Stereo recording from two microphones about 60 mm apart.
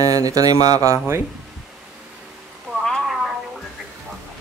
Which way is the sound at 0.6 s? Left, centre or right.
Right.